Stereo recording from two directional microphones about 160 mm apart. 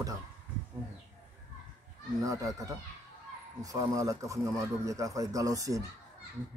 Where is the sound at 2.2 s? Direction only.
20° right (ahead or behind).